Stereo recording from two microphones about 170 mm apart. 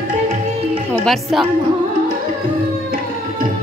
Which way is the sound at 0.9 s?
5° left (ahead or behind).